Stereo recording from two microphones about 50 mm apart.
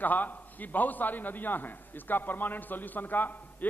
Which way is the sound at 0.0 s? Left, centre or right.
Left.